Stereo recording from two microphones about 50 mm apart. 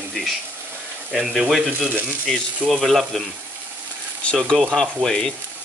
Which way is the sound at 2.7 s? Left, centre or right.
Centre.